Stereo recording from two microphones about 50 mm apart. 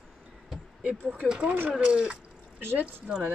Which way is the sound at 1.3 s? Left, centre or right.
Right.